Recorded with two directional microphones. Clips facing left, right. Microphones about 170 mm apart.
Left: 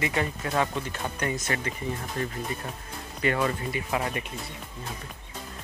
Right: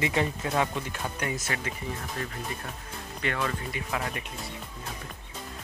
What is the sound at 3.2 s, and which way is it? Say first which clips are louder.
Speech: left 5 dB; 10° left (ahead or behind).